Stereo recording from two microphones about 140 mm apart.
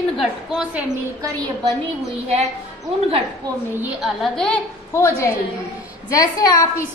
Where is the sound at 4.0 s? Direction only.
Centre (ahead or behind).